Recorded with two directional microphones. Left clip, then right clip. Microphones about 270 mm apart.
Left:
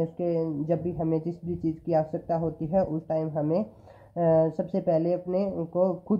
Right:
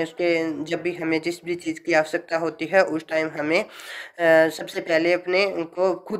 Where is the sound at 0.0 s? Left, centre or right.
Right.